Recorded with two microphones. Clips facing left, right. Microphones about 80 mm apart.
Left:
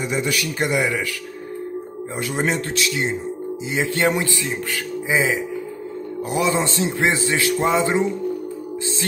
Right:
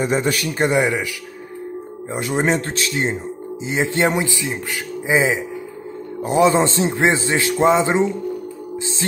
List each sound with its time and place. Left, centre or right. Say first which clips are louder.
0.0 s a man's voice: right 4 dB; right
2.1 s a man's voice: right 3 dB; right
5.0 s a man's voice: right 3 dB; right